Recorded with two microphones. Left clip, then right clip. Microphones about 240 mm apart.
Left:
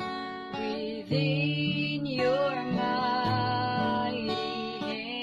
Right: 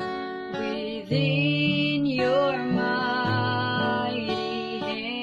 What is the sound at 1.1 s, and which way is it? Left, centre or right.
Music, centre.